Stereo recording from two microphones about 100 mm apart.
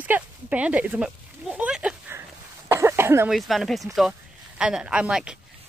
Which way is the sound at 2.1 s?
25° right (ahead or behind).